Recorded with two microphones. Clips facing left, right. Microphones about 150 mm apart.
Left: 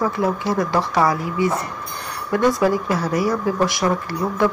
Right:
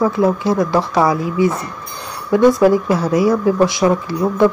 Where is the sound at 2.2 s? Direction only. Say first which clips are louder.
Right 6 dB; 15° right (ahead or behind).